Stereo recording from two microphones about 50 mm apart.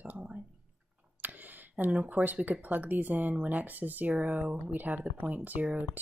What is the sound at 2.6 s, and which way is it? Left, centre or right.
Speech, right.